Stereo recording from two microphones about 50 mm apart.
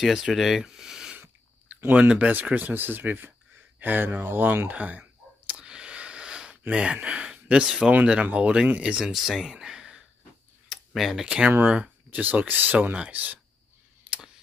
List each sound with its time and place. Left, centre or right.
0.0 s speech: centre
1.9 s speech: right
4.6 s speech: right
5.5 s a sound: centre
6.7 s speech: right
7.6 s speech: centre
8.1 s speech: right
9.1 s speech: centre
9.4 s a sound: centre
10.7 s speech: centre
11.6 s speech: right
12.2 s speech: right
14.0 s a sound: centre